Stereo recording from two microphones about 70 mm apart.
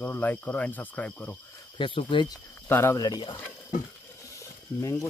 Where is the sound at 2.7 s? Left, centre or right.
Left.